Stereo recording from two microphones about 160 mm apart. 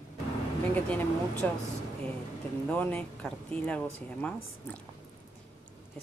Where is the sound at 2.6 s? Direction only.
10° left (ahead or behind).